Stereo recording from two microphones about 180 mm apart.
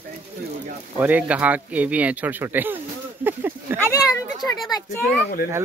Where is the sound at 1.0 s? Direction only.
10° right (ahead or behind).